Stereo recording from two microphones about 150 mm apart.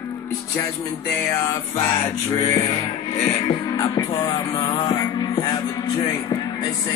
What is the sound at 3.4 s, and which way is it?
Music, 35° left (ahead or behind).